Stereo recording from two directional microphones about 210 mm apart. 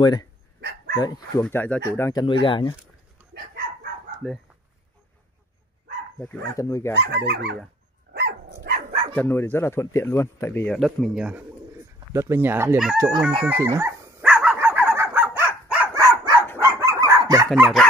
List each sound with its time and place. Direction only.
0.0 s speech: 20° left (ahead or behind)
0.6 s dog: 50° right (ahead or behind)
0.9 s speech: 20° left (ahead or behind)
1.4 s speech: 10° left (ahead or behind); by 2.7 s 25° left (ahead or behind)
4.2 s chicken: 5° left (ahead or behind)
6.1 s speech: 10° left (ahead or behind)
7.0 s speech: 55° right (ahead or behind)
8.1 s dog: 50° right (ahead or behind)
9.1 s speech: 10° left (ahead or behind); by 13.2 s 15° right (ahead or behind)
13.5 s dog: 10° right (ahead or behind)
16.6 s chicken: 15° right (ahead or behind)
17.6 s chicken: centre (ahead or behind)